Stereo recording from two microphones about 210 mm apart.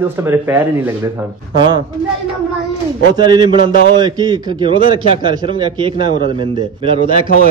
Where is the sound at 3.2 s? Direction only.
20° right (ahead or behind).